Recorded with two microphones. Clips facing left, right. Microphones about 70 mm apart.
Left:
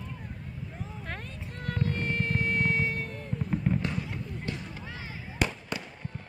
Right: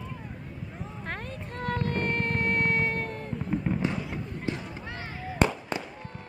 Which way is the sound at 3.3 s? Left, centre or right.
Centre.